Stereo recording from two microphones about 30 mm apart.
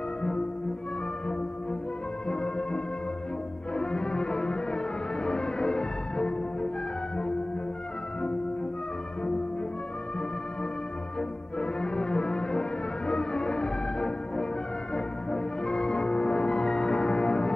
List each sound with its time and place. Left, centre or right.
2.2 s music: left
11.1 s music: left